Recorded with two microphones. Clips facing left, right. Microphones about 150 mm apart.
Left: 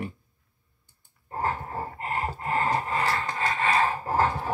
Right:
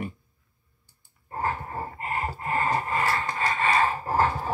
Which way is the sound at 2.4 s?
30° left (ahead or behind).